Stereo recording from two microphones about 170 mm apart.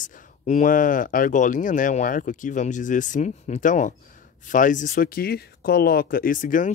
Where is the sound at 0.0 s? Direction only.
45° left (ahead or behind).